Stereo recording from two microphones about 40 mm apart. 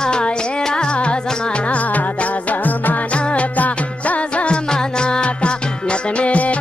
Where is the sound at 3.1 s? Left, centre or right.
Left.